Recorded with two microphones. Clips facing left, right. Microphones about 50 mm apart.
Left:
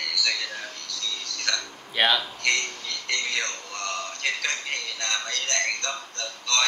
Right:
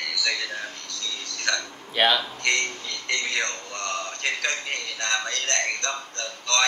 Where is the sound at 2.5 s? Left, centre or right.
Centre.